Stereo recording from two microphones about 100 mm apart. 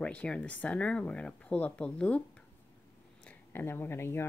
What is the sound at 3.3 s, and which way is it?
Speech, 20° left (ahead or behind).